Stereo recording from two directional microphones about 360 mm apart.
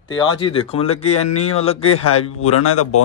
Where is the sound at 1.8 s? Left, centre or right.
Left.